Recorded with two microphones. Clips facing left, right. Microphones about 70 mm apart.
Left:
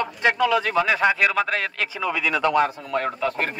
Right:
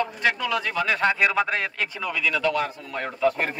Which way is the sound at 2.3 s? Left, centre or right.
Left.